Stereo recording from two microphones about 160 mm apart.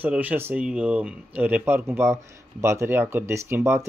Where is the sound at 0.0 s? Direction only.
10° right (ahead or behind).